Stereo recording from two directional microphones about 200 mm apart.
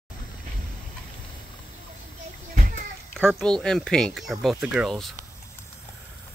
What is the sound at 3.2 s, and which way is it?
Speech, 5° left (ahead or behind).